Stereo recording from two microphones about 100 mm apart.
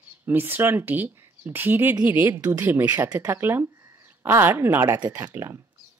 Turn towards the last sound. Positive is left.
turn(degrees=-25)  # may be behind; listen again after turning